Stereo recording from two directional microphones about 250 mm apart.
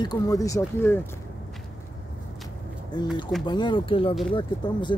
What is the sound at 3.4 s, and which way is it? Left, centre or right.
Speech, centre.